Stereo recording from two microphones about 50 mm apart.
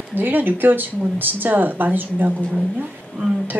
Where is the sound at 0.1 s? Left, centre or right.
Right.